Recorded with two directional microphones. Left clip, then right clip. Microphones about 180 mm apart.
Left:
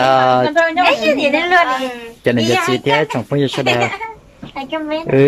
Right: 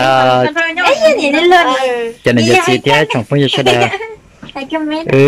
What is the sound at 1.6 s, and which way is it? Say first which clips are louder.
Speech: right 4 dB; 35° right (ahead or behind).